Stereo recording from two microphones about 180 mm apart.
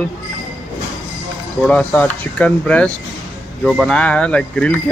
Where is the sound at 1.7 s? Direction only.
5° left (ahead or behind).